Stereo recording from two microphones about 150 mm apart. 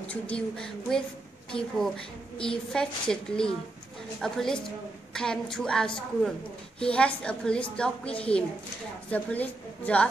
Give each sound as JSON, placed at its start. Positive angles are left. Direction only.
{"t": 0.1, "sound": "a woman's voice", "side_deg": 5}